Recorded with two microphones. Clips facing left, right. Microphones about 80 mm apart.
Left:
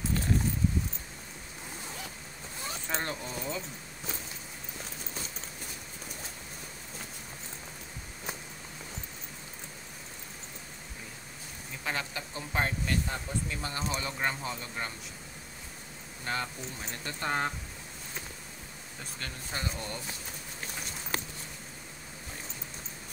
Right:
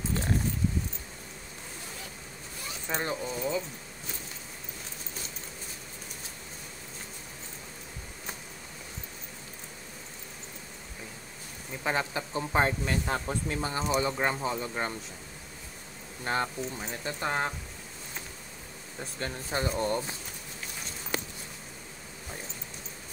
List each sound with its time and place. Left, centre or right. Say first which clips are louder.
2.9 s speech: right 4 dB; centre
11.8 s speech: right 5 dB; right
13.0 s speech: right 4 dB; right
13.6 s speech: right 6 dB; right
16.3 s speech: right 4 dB; right
17.0 s speech: right 1 dB; centre
19.1 s speech: right 7 dB; right